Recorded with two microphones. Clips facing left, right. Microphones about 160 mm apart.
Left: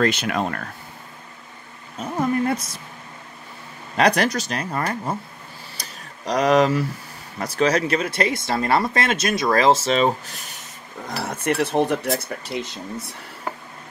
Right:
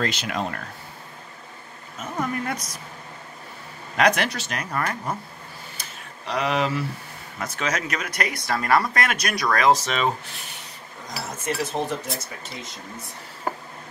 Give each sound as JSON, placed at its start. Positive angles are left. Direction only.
{"t": 0.0, "sound": "speech", "side_deg": 55}
{"t": 2.0, "sound": "a woman's voice", "side_deg": 30}
{"t": 3.9, "sound": "speech", "side_deg": 35}
{"t": 5.8, "sound": "a sound", "side_deg": 40}
{"t": 7.3, "sound": "speech", "side_deg": 35}
{"t": 11.1, "sound": "speech", "side_deg": 60}